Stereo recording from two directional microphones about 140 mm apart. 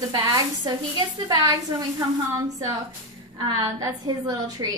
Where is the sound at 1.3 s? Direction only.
30° right (ahead or behind).